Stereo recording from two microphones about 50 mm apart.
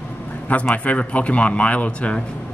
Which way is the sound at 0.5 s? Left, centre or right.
Left.